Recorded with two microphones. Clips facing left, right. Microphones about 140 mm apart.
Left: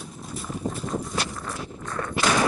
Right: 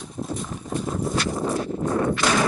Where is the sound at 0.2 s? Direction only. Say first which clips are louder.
Right 15 dB; 40° right (ahead or behind).